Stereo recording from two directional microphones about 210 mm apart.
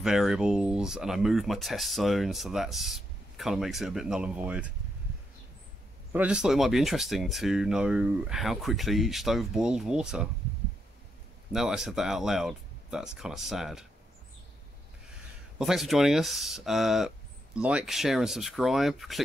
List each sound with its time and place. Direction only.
0.0 s speech: centre (ahead or behind)
6.1 s speech: 5° right (ahead or behind)
11.5 s speech: centre (ahead or behind)
15.6 s speech: centre (ahead or behind)